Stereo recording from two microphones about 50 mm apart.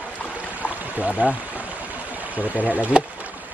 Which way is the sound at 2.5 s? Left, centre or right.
Left.